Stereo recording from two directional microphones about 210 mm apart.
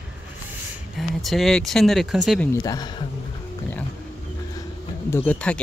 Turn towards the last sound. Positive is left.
turn(degrees=5)  # may be behind; listen again after turning